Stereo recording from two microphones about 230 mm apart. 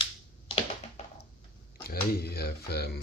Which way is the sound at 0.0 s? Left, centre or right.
Left.